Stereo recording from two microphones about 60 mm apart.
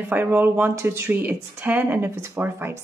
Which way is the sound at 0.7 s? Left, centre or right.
Right.